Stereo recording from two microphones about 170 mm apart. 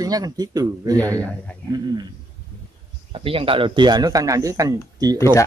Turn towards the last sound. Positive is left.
turn(degrees=-20)  # may be behind; listen again after turning